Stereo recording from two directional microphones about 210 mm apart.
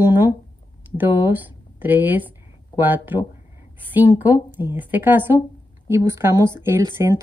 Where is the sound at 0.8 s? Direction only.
10° right (ahead or behind).